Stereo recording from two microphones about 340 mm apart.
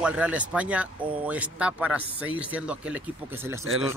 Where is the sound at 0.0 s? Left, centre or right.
Centre.